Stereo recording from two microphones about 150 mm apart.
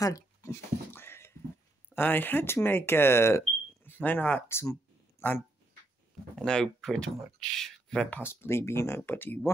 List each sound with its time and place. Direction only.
0.0 s a sound: 20° left (ahead or behind)
2.0 s speech: 15° left (ahead or behind)
6.3 s speech: 5° left (ahead or behind)